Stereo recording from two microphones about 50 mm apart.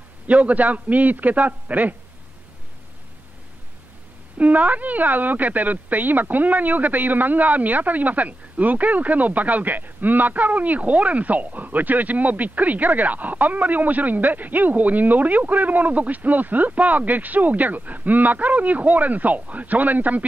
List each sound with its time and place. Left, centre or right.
0.3 s speech: right
4.4 s speech: right